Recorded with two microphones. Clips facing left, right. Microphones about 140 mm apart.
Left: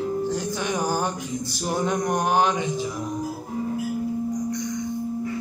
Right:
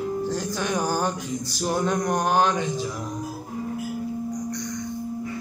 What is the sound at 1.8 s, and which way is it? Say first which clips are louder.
Mantra: left 2 dB; 15° left (ahead or behind).